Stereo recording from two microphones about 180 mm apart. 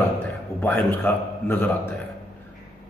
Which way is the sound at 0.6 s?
10° left (ahead or behind).